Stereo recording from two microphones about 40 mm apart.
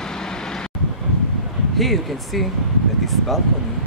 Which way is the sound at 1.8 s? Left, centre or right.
Centre.